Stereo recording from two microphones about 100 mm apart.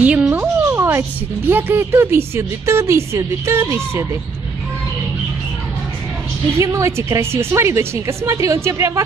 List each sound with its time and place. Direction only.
0.0 s a woman's voice: 15° right (ahead or behind)
6.6 s a woman's voice: 30° right (ahead or behind)